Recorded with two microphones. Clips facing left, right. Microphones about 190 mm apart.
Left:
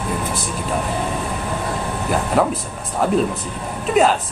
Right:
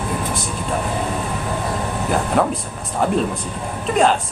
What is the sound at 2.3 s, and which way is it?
Speech, centre (ahead or behind).